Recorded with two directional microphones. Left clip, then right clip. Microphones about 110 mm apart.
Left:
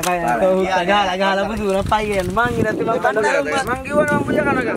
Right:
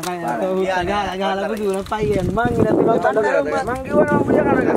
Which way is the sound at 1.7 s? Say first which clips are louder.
Left 4 dB; 35° left (ahead or behind).